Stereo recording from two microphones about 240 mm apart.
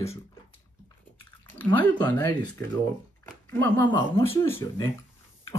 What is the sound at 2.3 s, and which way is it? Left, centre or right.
Speech, centre.